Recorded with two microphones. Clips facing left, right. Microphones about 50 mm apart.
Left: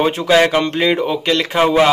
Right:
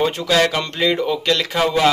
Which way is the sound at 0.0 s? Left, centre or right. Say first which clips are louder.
Left 4 dB; left.